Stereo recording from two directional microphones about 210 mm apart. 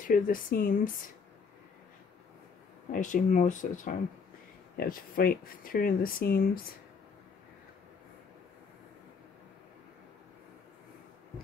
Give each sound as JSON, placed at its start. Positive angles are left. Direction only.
{"t": 0.0, "sound": "speech", "side_deg": 40}
{"t": 2.9, "sound": "speech", "side_deg": 40}